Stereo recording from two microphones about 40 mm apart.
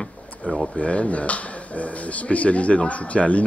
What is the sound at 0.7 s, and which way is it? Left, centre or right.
Speech, left.